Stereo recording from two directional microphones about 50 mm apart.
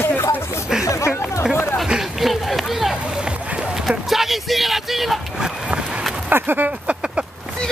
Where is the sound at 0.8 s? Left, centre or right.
Left.